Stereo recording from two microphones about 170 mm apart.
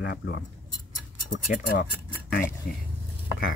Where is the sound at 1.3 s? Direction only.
50° left (ahead or behind).